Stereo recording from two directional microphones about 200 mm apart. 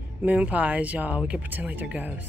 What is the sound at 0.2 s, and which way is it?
Speech, 10° right (ahead or behind).